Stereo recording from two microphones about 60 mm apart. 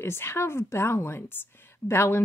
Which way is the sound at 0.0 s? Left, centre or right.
Left.